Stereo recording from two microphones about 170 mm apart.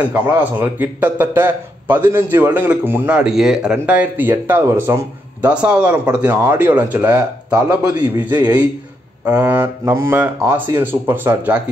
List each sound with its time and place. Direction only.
0.0 s a man's voice: 10° right (ahead or behind)
9.2 s a man's voice: 10° right (ahead or behind)